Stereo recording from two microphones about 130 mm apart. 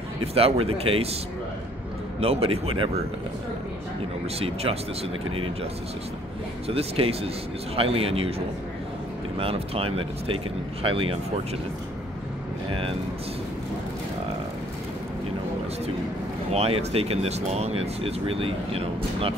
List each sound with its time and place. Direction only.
0.2 s speech: 50° right (ahead or behind)
2.1 s speech: 50° right (ahead or behind)
5.3 s speech: 45° right (ahead or behind)
6.7 s speech: 50° right (ahead or behind)
9.4 s speech: 45° right (ahead or behind)
16.5 s speech: 50° right (ahead or behind)